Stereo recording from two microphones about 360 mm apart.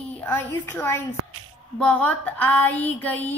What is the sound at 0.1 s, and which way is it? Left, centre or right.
Speech, centre.